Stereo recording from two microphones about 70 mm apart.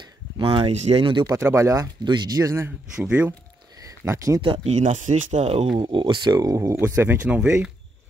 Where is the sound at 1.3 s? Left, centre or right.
Right.